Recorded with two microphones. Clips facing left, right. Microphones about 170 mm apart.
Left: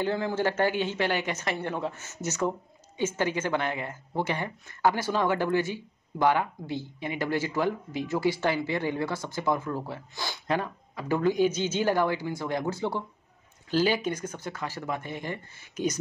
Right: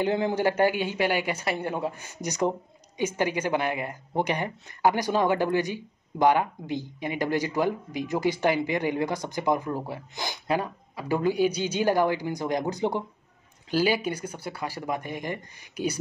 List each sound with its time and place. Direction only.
0.0 s speech: 15° right (ahead or behind)